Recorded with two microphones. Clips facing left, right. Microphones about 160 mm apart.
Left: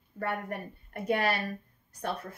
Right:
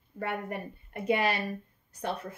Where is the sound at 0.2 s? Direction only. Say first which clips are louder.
Even; 15° right (ahead or behind).